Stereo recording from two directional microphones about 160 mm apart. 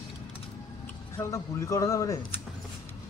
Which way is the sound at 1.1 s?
20° left (ahead or behind).